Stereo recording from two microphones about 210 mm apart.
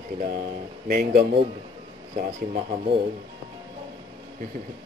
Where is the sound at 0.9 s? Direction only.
45° right (ahead or behind).